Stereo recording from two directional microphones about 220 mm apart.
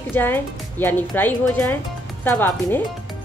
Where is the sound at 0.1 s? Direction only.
10° left (ahead or behind).